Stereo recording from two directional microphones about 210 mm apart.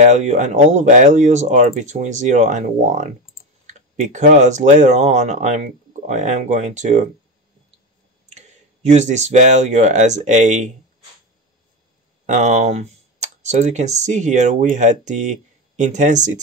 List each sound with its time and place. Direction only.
0.0 s speech: 35° right (ahead or behind)
8.3 s speech: 35° right (ahead or behind)
12.3 s speech: 35° right (ahead or behind)